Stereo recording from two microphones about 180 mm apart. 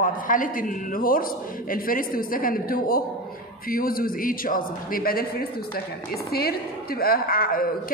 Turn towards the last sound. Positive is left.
turn(degrees=55)  # may be behind; listen again after turning